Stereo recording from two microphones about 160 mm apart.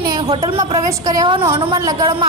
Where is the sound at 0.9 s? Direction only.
20° right (ahead or behind).